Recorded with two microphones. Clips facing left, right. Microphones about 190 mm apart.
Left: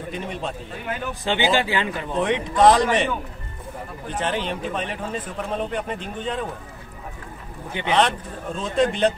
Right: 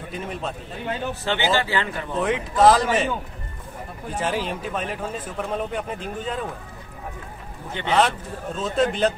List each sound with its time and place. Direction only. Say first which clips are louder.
0.1 s a man's voice: even; centre (ahead or behind)
1.2 s speech: left 2 dB; 15° left (ahead or behind)
2.1 s a man's voice: left 1 dB; 5° right (ahead or behind)
4.1 s a man's voice: even; 5° right (ahead or behind)
7.7 s speech: left 2 dB; 10° left (ahead or behind)
8.5 s a man's voice: left 1 dB; 5° right (ahead or behind)